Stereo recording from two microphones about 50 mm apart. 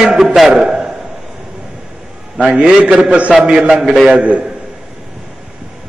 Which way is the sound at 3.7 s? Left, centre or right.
Centre.